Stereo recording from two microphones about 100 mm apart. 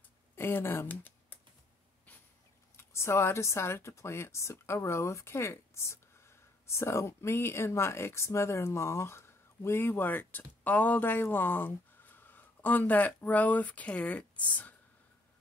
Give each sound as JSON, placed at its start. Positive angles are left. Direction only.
{"t": 0.4, "sound": "speech", "side_deg": 20}
{"t": 2.8, "sound": "speech", "side_deg": 25}